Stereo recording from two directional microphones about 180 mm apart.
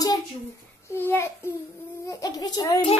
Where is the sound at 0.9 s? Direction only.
15° left (ahead or behind).